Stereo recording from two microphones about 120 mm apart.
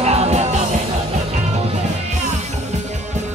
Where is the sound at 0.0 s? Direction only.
65° right (ahead or behind).